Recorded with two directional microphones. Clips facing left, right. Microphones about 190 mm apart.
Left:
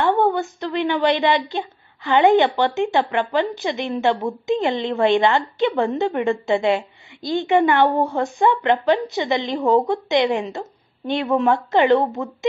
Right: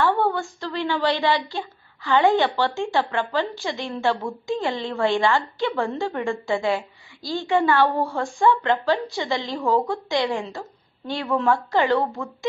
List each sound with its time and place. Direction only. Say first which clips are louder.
0.0 s a woman's voice: left 3 dB; 20° left (ahead or behind)